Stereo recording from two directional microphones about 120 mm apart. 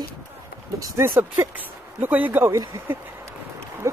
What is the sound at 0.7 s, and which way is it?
Speech, 25° right (ahead or behind).